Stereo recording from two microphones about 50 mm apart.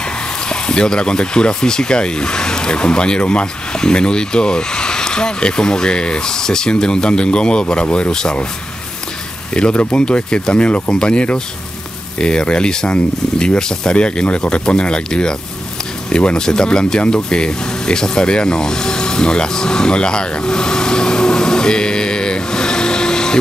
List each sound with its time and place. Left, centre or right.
0.5 s speech: centre
9.5 s speech: centre